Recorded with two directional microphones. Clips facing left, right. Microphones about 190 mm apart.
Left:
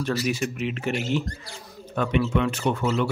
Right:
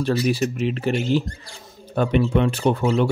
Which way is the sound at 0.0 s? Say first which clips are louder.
Right 5 dB; 30° right (ahead or behind).